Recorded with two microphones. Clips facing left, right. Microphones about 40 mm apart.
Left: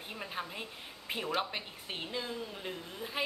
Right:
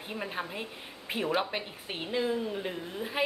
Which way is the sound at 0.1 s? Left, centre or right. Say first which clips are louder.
Right 5 dB; centre.